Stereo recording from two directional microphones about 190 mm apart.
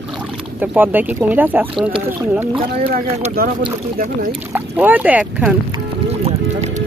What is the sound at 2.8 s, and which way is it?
Speech, 50° right (ahead or behind).